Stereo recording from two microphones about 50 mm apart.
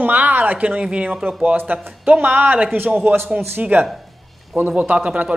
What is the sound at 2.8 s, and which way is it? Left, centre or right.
A man's voice, right.